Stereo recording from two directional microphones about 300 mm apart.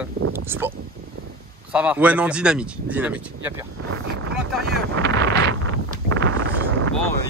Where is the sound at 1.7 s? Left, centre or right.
Centre.